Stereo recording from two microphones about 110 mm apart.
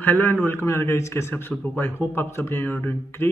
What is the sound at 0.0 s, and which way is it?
Speech, 15° left (ahead or behind).